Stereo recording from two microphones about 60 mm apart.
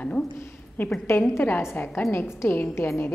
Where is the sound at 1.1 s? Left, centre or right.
Left.